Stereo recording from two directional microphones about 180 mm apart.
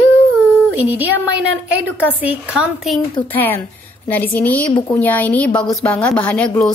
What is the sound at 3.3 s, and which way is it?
A woman's voice, 10° left (ahead or behind).